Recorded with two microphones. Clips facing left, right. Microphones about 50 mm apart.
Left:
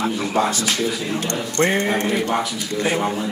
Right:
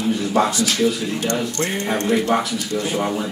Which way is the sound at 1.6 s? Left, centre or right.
Left.